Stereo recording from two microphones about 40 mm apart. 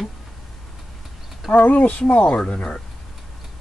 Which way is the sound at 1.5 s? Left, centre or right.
Left.